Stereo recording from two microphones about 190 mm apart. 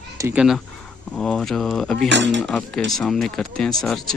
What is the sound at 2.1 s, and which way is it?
Speech, 70° right (ahead or behind).